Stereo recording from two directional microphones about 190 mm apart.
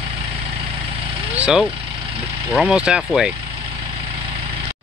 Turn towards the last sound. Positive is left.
turn(degrees=-5)  # may be behind; listen again after turning